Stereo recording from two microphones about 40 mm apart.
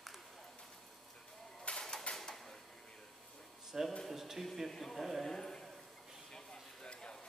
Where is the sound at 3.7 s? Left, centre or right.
Centre.